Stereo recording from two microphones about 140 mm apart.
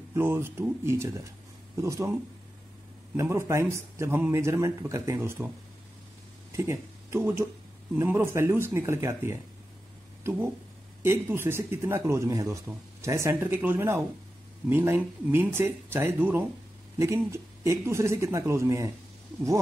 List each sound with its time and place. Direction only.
0.1 s speech: 15° right (ahead or behind)
3.2 s speech: 20° right (ahead or behind)
6.5 s speech: 20° right (ahead or behind)
11.1 s speech: 15° right (ahead or behind)